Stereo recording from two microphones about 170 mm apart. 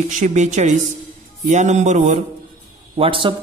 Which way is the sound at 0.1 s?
45° right (ahead or behind).